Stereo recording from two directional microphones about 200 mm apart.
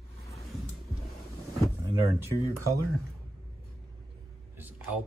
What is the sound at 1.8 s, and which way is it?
Drawer open or close, 15° right (ahead or behind).